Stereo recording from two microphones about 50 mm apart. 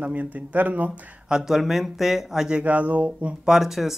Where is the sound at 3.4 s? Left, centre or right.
Centre.